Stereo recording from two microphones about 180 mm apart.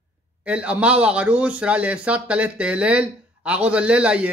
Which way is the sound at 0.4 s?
5° right (ahead or behind).